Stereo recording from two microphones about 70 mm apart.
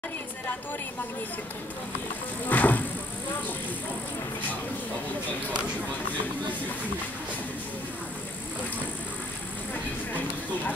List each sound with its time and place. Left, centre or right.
2.4 s vehicle: left